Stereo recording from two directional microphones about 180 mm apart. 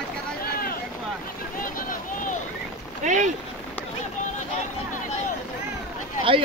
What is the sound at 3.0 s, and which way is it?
Boat, 45° right (ahead or behind).